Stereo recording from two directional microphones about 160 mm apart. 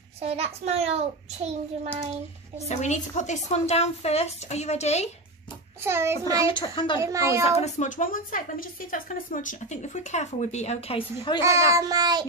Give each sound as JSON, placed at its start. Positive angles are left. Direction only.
{"t": 0.2, "sound": "a child's voice", "side_deg": -40}
{"t": 2.7, "sound": "a woman's voice", "side_deg": 45}
{"t": 5.9, "sound": "a woman's voice", "side_deg": -15}
{"t": 6.3, "sound": "a child's voice", "side_deg": 30}
{"t": 7.0, "sound": "a woman's voice", "side_deg": -20}
{"t": 7.4, "sound": "a woman's voice", "side_deg": 40}
{"t": 11.4, "sound": "child singing", "side_deg": -20}